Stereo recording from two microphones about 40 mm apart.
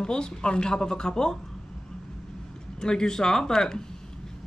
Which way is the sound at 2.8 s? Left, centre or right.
Centre.